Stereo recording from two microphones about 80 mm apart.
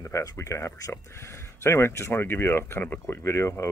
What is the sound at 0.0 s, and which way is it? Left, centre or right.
Speech, left.